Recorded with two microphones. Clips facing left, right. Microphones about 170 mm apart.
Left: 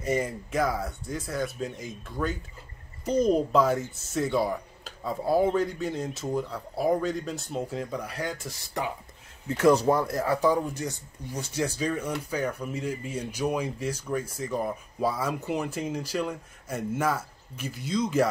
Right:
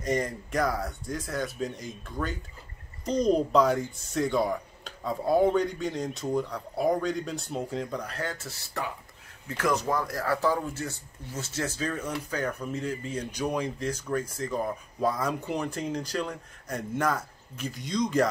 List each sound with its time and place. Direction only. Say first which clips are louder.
0.0 s speech: left 1 dB; 5° left (ahead or behind)
9.5 s speech: left 6 dB; 30° left (ahead or behind); by 18.3 s 5° left (ahead or behind)